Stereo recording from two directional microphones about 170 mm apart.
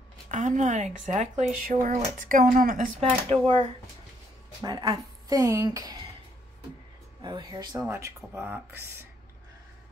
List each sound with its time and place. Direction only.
0.3 s speech: 45° right (ahead or behind)
3.0 s speech: 35° right (ahead or behind)
4.6 s speech: 25° right (ahead or behind)
7.2 s speech: 25° right (ahead or behind)